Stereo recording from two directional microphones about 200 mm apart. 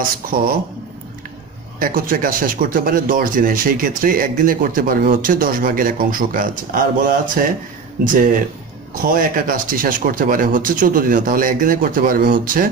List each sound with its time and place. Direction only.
0.0 s speech: 45° right (ahead or behind)
1.8 s speech: 45° right (ahead or behind)